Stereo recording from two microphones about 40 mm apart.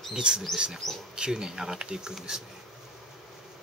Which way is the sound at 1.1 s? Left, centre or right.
Centre.